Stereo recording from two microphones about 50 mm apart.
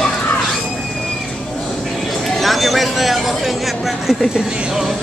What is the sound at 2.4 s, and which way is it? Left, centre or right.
Speech, centre.